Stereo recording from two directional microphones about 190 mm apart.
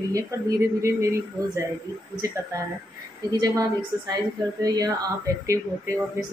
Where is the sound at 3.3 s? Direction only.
20° right (ahead or behind).